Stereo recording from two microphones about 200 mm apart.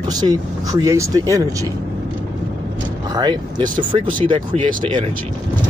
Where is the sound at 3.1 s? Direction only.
20° right (ahead or behind).